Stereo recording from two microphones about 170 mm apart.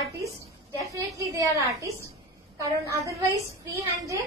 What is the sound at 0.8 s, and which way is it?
A woman's voice, 20° right (ahead or behind).